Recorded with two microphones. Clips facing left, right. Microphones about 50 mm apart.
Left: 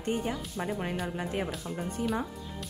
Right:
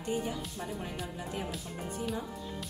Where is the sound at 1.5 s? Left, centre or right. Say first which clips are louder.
Left 4 dB; centre.